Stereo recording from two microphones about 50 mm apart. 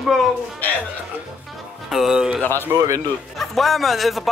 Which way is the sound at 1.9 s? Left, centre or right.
Centre.